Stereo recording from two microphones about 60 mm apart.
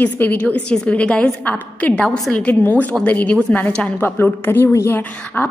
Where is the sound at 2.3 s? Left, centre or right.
Left.